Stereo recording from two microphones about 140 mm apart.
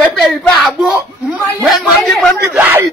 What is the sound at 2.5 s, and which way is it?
Speech, 15° right (ahead or behind).